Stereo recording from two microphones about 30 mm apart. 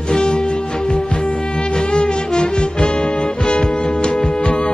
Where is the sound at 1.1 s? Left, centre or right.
Left.